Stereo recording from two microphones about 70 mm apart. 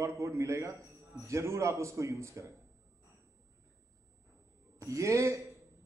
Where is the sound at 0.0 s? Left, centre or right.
Right.